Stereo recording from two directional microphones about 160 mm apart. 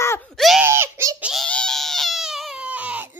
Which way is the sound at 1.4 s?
5° left (ahead or behind).